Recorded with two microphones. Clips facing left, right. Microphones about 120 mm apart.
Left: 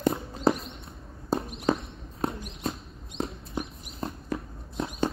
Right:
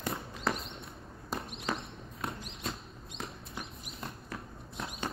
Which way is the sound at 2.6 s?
25° left (ahead or behind).